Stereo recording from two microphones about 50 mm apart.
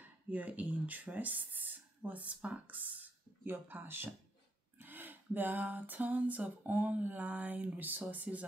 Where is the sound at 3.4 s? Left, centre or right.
Right.